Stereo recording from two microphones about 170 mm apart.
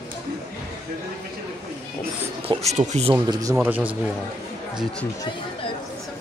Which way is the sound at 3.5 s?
10° right (ahead or behind).